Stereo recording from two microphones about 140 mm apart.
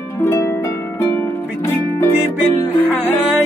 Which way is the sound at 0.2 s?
20° left (ahead or behind).